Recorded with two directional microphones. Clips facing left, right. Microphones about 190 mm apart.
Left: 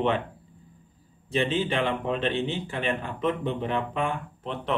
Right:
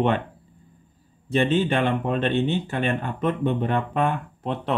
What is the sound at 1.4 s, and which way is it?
Speech, 50° right (ahead or behind).